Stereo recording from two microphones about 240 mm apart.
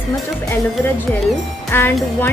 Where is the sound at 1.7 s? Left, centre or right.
Centre.